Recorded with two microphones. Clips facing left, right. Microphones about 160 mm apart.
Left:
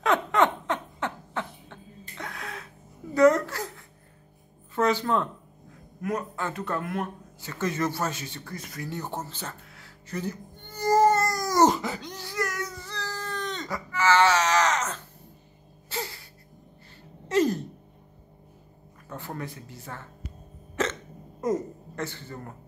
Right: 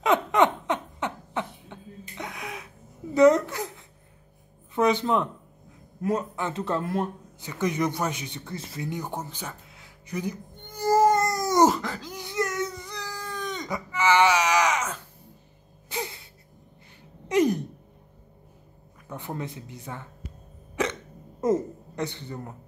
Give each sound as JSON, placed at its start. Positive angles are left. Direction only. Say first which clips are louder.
{"t": 0.0, "sound": "laughter", "louder": "right 2 dB", "side_deg": -20}
{"t": 3.2, "sound": "a sound", "louder": "right 2 dB", "side_deg": -20}
{"t": 4.7, "sound": "speech", "louder": "right 2 dB", "side_deg": -20}
{"t": 5.9, "sound": "a man's voice", "louder": "right 3 dB", "side_deg": -30}
{"t": 7.3, "sound": "a man's voice", "louder": "right 2 dB", "side_deg": -15}
{"t": 8.9, "sound": "music", "louder": "right 1 dB", "side_deg": -15}
{"t": 11.6, "sound": "a sound", "louder": "left 2 dB", "side_deg": 0}
{"t": 12.2, "sound": "baby cry", "louder": "right 6 dB", "side_deg": -20}
{"t": 15.9, "sound": "a sound", "louder": "right 1 dB", "side_deg": -20}
{"t": 17.3, "sound": "a sound", "louder": "right 1 dB", "side_deg": -15}
{"t": 19.0, "sound": "speech", "louder": "right 2 dB", "side_deg": -20}
{"t": 20.8, "sound": "hiccup", "louder": "right 1 dB", "side_deg": -15}
{"t": 21.4, "sound": "speech", "louder": "right 3 dB", "side_deg": -25}